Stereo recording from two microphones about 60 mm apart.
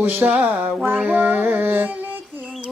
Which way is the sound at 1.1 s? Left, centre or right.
Right.